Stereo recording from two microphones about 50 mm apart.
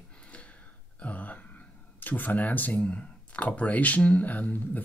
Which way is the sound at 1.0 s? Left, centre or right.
Left.